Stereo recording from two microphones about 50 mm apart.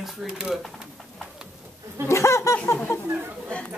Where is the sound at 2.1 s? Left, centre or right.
Left.